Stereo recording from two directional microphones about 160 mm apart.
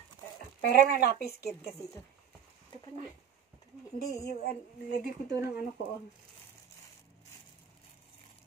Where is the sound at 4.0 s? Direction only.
75° left (ahead or behind).